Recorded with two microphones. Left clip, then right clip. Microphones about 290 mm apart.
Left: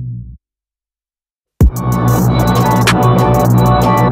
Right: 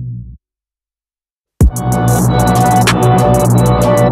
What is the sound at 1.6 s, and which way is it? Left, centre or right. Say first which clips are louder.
Music: right 1 dB; centre.